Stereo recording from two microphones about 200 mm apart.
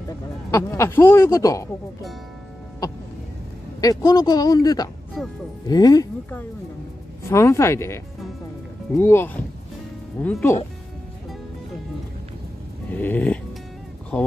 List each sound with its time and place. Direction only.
0.5 s speech: 15° left (ahead or behind)
3.8 s speech: 20° left (ahead or behind)
12.9 s speech: 10° left (ahead or behind)